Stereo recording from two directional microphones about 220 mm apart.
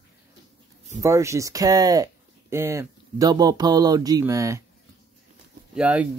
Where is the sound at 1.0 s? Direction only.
15° right (ahead or behind).